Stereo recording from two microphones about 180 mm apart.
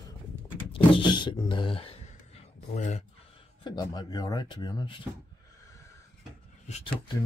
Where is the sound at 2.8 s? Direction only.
40° left (ahead or behind).